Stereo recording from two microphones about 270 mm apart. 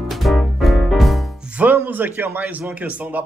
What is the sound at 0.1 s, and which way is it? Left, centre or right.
Music, centre.